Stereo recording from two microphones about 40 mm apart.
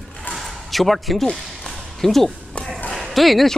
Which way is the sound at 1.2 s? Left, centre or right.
Centre.